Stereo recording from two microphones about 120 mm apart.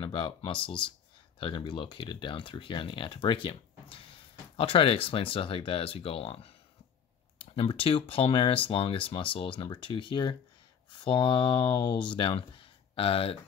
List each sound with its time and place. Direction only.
0.0 s speech: 40° left (ahead or behind)
1.4 s speech: 40° left (ahead or behind)